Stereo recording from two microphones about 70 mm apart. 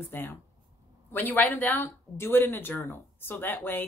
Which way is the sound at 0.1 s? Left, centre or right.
Left.